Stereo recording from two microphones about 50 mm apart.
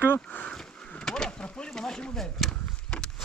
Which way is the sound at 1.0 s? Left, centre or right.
Centre.